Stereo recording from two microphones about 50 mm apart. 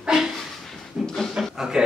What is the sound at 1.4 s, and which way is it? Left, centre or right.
Chuckle, centre.